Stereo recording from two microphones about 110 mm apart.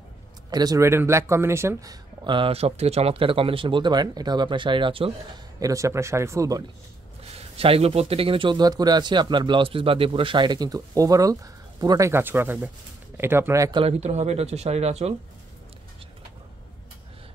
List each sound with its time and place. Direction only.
0.5 s a man's voice: 35° right (ahead or behind)
0.8 s speech: 25° right (ahead or behind)
2.2 s a man's voice: 50° right (ahead or behind)
2.5 s a man's voice: 70° right (ahead or behind); by 5.1 s 50° right (ahead or behind)
5.6 s speech: 30° right (ahead or behind)
7.3 s a man's voice: 60° right (ahead or behind); by 12.1 s 35° right (ahead or behind)
12.1 s speech: 20° right (ahead or behind)
13.8 s speech: 90° right; by 15.1 s 75° right (ahead or behind)